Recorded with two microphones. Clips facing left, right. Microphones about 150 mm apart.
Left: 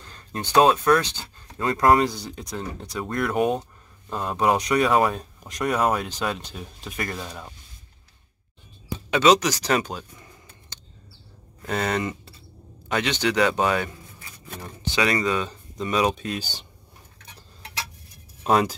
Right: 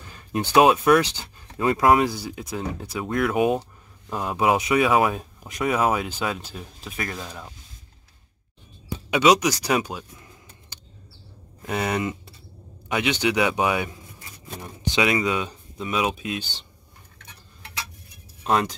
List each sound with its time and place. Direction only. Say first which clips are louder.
0.0 s a sound: right 6 dB; 10° right (ahead or behind)
0.6 s speech: right 1 dB; 10° right (ahead or behind)
9.1 s speech: even; 10° right (ahead or behind)
17.3 s tick-tock: left 2 dB; 35° left (ahead or behind)
18.4 s speech: left 2 dB; 5° left (ahead or behind)